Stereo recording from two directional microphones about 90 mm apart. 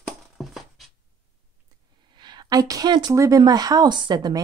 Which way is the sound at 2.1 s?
55° right (ahead or behind).